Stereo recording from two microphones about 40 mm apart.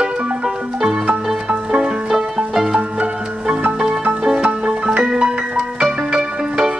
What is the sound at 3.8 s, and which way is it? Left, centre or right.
Music, right.